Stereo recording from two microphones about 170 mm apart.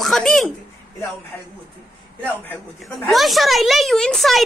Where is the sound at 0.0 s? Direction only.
Centre (ahead or behind).